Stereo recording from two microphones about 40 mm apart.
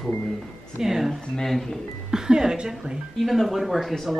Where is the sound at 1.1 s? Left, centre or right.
Centre.